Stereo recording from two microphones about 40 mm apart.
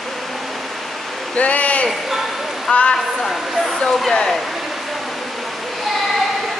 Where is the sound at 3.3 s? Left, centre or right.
Centre.